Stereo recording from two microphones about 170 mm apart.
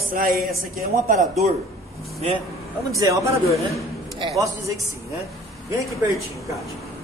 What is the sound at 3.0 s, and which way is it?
Speech, 20° right (ahead or behind).